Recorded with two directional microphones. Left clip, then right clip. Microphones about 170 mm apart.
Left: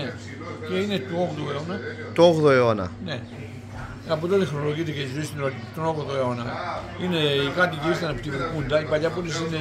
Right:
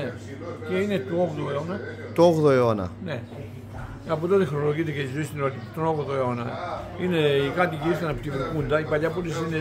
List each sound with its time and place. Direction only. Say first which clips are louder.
0.7 s a man's voice: right 1 dB; 20° right (ahead or behind)
2.1 s a man's voice: left 2 dB; 10° right (ahead or behind)
4.1 s a man's voice: even; 25° right (ahead or behind)